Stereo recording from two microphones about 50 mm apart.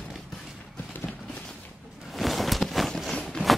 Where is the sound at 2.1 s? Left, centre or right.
Centre.